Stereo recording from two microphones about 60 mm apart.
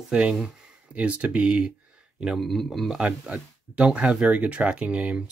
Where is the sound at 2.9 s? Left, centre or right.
Centre.